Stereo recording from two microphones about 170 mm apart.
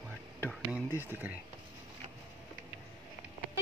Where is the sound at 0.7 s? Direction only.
10° right (ahead or behind).